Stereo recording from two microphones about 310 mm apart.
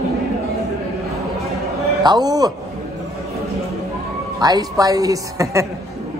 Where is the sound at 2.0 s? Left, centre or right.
Centre.